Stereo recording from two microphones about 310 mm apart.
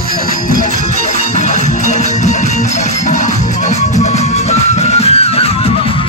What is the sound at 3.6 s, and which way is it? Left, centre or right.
Music, left.